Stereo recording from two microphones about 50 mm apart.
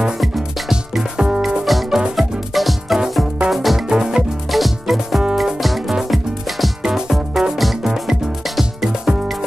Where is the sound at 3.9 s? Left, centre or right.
Centre.